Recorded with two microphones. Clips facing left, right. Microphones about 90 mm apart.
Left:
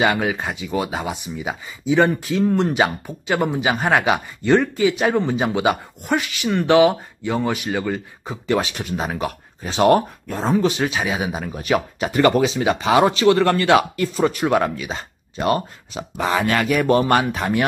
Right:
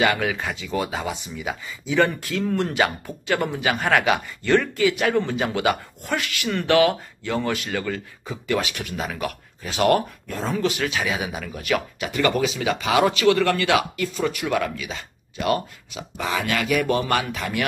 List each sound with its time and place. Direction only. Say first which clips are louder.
0.0 s speech: left 2 dB; 25° left (ahead or behind)
8.3 s speech: left 4 dB; 30° left (ahead or behind)